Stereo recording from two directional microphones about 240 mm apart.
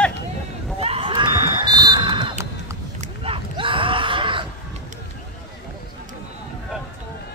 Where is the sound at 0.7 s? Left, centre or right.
Right.